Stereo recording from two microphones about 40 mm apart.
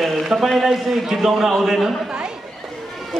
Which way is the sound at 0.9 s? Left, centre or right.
Centre.